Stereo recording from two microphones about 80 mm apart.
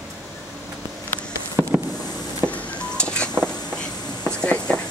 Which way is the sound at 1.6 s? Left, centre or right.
Right.